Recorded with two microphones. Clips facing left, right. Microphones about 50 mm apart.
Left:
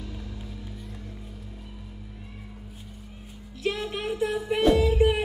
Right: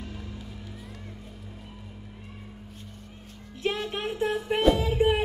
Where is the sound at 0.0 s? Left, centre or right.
Centre.